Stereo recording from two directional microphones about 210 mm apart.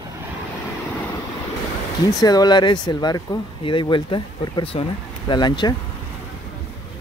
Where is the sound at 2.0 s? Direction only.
15° left (ahead or behind).